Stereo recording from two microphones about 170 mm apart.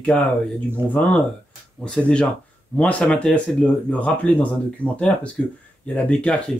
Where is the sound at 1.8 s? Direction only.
5° left (ahead or behind).